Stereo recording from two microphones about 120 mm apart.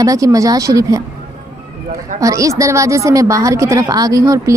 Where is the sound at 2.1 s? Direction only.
25° right (ahead or behind).